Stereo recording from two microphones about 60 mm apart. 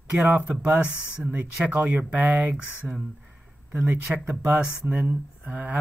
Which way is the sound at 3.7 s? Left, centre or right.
Right.